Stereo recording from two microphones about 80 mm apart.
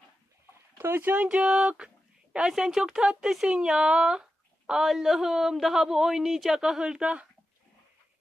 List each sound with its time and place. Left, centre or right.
0.7 s speech: right
1.1 s a woman's voice: centre